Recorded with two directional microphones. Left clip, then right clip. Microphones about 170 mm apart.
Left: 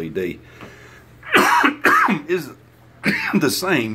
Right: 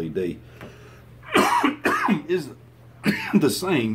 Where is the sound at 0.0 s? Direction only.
Centre (ahead or behind).